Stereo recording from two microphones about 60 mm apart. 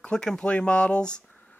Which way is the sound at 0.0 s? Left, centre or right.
Centre.